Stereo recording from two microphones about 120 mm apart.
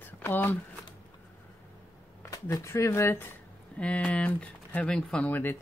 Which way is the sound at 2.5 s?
25° left (ahead or behind).